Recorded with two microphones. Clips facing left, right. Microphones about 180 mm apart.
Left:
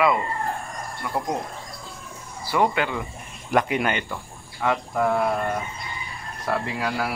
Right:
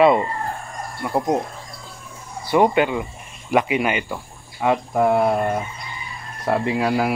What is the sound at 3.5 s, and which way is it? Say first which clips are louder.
Speech: right 3 dB; 5° right (ahead or behind).